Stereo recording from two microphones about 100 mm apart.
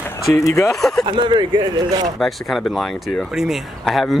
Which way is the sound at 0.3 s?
30° left (ahead or behind).